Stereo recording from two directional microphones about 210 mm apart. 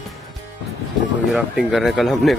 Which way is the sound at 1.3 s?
Centre (ahead or behind).